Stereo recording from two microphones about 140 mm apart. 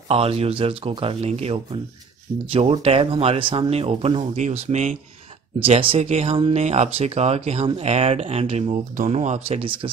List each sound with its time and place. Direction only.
0.1 s speech: 45° right (ahead or behind)
5.6 s speech: 40° right (ahead or behind)
8.9 s speech: 60° right (ahead or behind); by 9.8 s 40° right (ahead or behind)